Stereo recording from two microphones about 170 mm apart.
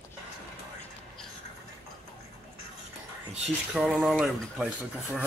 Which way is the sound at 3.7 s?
Centre (ahead or behind).